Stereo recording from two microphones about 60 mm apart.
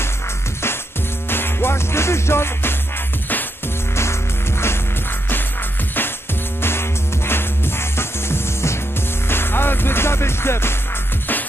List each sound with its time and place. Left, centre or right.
1.3 s music: left
3.9 s music: left
6.6 s music: left